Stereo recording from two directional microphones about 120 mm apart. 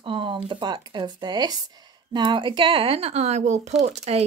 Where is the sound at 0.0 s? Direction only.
45° right (ahead or behind).